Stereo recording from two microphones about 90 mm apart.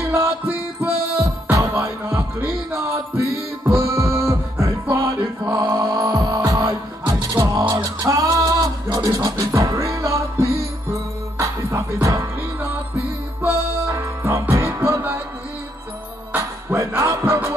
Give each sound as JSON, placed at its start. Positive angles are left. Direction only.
{"t": 0.0, "sound": "music", "side_deg": -25}
{"t": 5.0, "sound": "mantra", "side_deg": -35}
{"t": 5.9, "sound": "music", "side_deg": -40}
{"t": 7.4, "sound": "music", "side_deg": -50}
{"t": 7.7, "sound": "music", "side_deg": -35}
{"t": 16.3, "sound": "music", "side_deg": -25}